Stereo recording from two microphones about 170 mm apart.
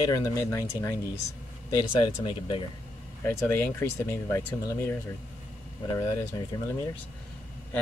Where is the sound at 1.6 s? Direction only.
25° left (ahead or behind).